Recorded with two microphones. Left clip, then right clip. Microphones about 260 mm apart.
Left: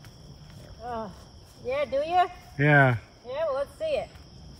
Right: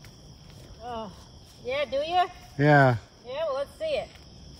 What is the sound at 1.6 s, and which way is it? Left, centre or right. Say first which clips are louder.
Speech: left 1 dB; centre.